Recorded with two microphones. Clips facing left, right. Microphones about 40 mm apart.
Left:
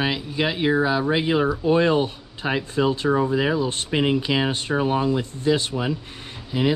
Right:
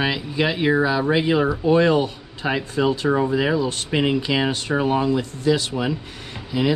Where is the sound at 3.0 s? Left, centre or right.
Right.